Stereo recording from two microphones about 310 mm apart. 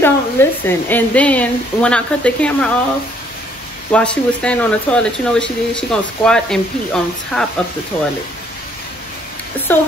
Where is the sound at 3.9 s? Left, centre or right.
Centre.